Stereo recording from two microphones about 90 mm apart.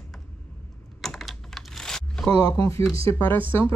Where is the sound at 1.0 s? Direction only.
5° left (ahead or behind).